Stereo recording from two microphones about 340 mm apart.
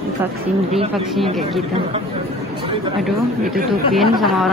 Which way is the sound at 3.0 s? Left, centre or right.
Centre.